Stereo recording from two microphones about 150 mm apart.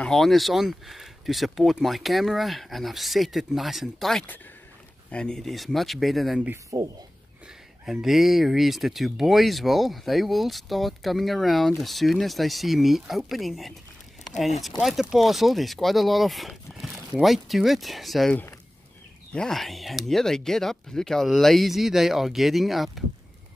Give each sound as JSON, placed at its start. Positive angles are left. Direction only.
{"t": 0.0, "sound": "speech", "side_deg": 0}
{"t": 6.5, "sound": "speech", "side_deg": -25}
{"t": 7.8, "sound": "speech", "side_deg": 0}
{"t": 14.8, "sound": "speech", "side_deg": 0}